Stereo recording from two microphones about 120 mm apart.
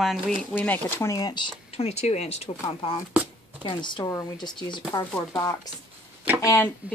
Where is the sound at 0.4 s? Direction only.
10° left (ahead or behind); by 1.5 s 35° left (ahead or behind).